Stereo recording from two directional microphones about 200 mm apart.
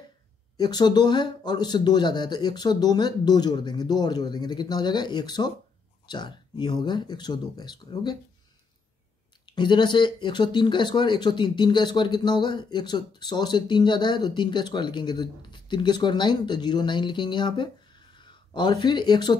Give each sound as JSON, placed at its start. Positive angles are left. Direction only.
{"t": 0.6, "sound": "speech", "side_deg": 20}
{"t": 9.5, "sound": "speech", "side_deg": 25}